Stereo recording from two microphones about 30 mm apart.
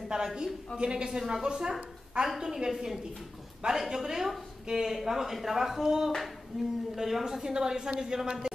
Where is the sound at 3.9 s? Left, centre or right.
Centre.